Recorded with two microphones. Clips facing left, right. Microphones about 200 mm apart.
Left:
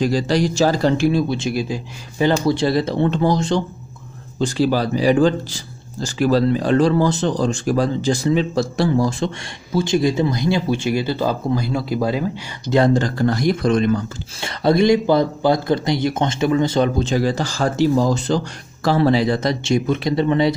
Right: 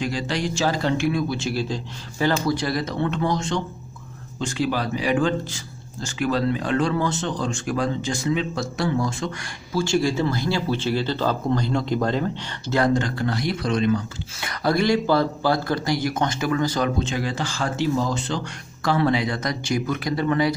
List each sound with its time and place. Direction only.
0.0 s speech: 35° left (ahead or behind)
1.3 s speech: 15° left (ahead or behind)
2.4 s speech: 25° left (ahead or behind)
9.8 s speech: 20° left (ahead or behind)
12.7 s speech: 30° left (ahead or behind); by 14.0 s 45° left (ahead or behind)
14.4 s speech: 25° left (ahead or behind)
17.0 s speech: 40° left (ahead or behind)